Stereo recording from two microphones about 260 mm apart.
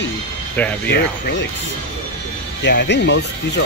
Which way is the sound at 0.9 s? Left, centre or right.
Left.